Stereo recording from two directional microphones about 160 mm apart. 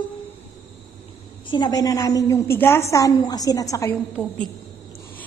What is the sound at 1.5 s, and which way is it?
A woman's voice, 25° left (ahead or behind).